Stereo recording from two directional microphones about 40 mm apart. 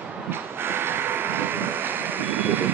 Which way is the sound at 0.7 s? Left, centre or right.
Right.